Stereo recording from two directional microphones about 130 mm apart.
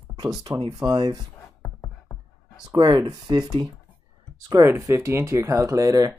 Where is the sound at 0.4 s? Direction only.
35° right (ahead or behind).